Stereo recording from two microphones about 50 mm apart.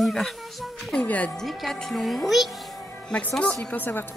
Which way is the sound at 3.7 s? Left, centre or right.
Left.